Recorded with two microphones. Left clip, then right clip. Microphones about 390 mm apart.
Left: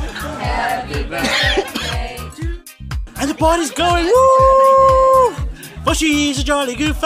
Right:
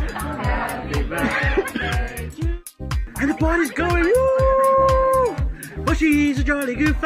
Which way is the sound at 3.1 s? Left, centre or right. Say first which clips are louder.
Left 5 dB; centre.